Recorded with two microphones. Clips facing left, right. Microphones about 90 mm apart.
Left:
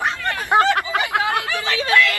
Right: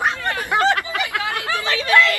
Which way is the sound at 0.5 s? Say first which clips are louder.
Left 3 dB; 25° left (ahead or behind).